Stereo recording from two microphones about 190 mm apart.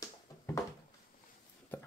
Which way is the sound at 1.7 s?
10° left (ahead or behind).